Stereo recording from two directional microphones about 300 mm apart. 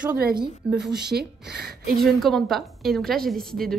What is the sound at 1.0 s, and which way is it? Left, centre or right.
Speech, right.